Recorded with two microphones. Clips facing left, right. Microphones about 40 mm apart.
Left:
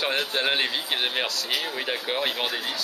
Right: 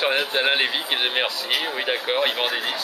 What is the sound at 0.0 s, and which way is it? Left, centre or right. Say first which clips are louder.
A man's voice: right 4 dB; centre.